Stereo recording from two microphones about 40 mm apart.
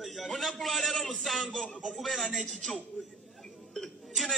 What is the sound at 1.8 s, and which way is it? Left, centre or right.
A man's voice, centre.